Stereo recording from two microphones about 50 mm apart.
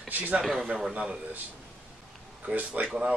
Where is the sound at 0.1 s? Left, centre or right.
Right.